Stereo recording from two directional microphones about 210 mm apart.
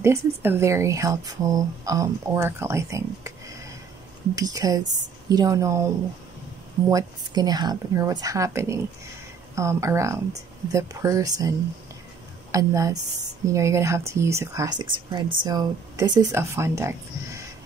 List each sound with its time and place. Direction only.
0.0 s speech: 10° right (ahead or behind)
6.9 s a woman's voice: 15° right (ahead or behind)